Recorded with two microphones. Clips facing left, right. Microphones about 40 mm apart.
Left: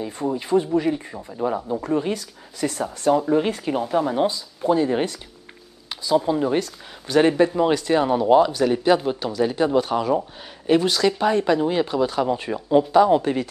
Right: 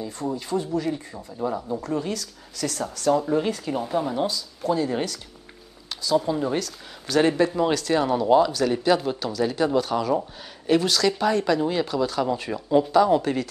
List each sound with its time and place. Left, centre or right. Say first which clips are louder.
0.0 s speech: left 4 dB; left
3.4 s speech: left 3 dB; left